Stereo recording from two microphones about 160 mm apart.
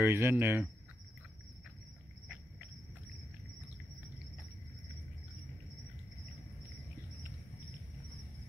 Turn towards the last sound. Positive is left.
turn(degrees=-20)  # may be behind; listen again after turning